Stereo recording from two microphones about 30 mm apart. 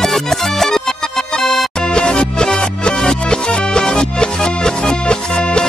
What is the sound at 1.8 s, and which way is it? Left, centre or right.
Music, left.